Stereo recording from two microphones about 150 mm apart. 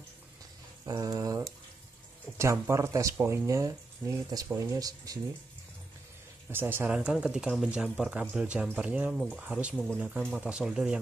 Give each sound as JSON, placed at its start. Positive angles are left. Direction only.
{"t": 0.8, "sound": "a sound", "side_deg": -25}
{"t": 2.3, "sound": "speech", "side_deg": -15}
{"t": 6.5, "sound": "speech", "side_deg": -15}